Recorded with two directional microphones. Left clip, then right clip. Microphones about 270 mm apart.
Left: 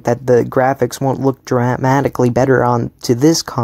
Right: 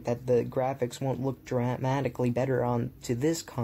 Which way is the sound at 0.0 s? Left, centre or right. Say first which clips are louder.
Left 14 dB; left.